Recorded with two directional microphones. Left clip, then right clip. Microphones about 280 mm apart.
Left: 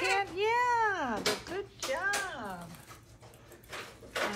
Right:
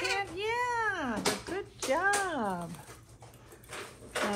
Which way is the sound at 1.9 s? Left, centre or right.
Centre.